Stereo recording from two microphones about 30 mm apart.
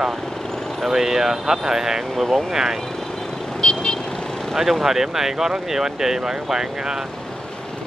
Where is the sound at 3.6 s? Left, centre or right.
Left.